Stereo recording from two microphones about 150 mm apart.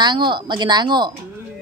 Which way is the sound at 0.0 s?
30° right (ahead or behind).